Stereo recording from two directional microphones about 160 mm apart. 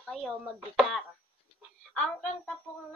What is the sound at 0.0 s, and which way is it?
Chopping, centre (ahead or behind).